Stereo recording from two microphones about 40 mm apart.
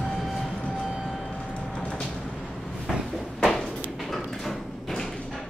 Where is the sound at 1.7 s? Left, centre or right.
Left.